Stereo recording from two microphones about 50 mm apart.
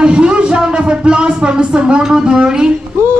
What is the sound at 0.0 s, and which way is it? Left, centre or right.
Music, centre.